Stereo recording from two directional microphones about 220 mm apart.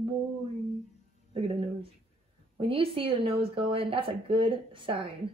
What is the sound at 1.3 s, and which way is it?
Speech, 25° right (ahead or behind).